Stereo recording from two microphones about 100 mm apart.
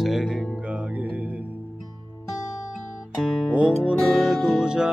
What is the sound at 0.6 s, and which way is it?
Music, 10° right (ahead or behind).